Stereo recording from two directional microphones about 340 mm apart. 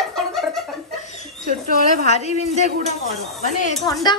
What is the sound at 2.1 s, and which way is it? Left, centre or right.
Speech, centre.